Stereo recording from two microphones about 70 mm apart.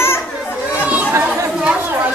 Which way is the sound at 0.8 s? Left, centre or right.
Centre.